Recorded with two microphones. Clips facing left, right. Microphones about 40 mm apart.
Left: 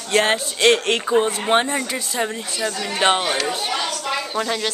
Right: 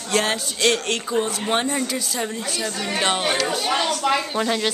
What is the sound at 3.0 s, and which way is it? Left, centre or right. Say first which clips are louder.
Speech: left 5 dB; centre.